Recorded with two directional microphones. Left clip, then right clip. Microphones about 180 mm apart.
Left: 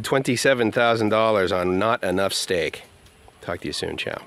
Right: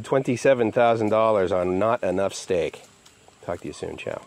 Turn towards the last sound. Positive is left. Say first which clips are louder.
# left 4 dB
turn(degrees=20)  # may be behind; listen again after turning